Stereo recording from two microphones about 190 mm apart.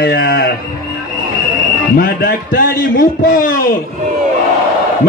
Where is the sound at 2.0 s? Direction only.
50° left (ahead or behind).